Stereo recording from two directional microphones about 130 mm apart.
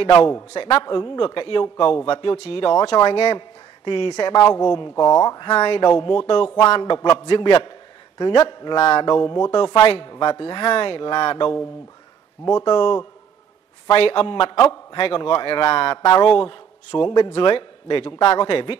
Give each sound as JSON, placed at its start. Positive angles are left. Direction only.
{"t": 0.1, "sound": "a man's voice", "side_deg": 30}
{"t": 0.5, "sound": "a man's voice", "side_deg": 40}
{"t": 3.3, "sound": "a sound", "side_deg": 40}
{"t": 4.4, "sound": "a man's voice", "side_deg": 30}
{"t": 5.6, "sound": "a man's voice", "side_deg": 40}
{"t": 9.0, "sound": "a man's voice", "side_deg": 35}